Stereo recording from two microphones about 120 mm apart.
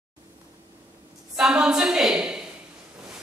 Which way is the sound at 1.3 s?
5° right (ahead or behind).